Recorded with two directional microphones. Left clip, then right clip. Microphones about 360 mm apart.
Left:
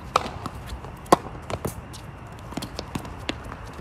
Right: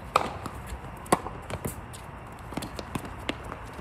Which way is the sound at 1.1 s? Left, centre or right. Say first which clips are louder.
Left 7 dB; centre.